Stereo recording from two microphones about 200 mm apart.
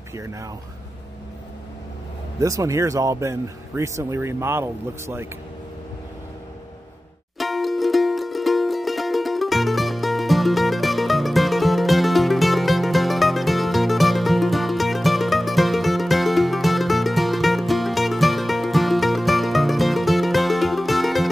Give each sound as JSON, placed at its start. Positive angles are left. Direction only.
{"t": 0.1, "sound": "speech", "side_deg": -15}
{"t": 2.4, "sound": "speech", "side_deg": -15}
{"t": 7.3, "sound": "music", "side_deg": 0}